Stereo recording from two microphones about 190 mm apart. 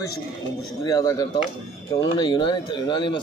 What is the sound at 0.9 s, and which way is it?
Speech, 20° left (ahead or behind).